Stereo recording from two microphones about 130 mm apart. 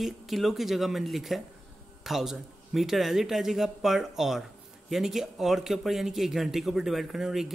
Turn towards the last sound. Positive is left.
turn(degrees=-5)  # may be behind; listen again after turning